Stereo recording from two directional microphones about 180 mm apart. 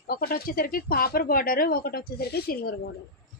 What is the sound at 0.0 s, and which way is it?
Speech, 55° left (ahead or behind).